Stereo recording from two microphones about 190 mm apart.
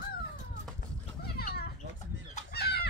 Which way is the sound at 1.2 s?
55° left (ahead or behind).